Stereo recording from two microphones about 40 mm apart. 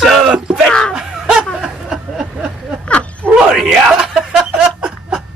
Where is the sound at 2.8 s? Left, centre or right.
Left.